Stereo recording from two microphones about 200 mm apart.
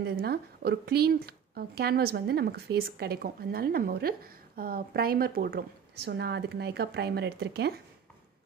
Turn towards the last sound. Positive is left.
turn(degrees=-55)  # may be behind; listen again after turning